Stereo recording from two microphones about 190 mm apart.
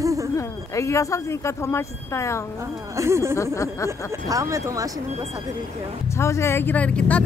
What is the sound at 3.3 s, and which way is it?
Speech, 15° left (ahead or behind).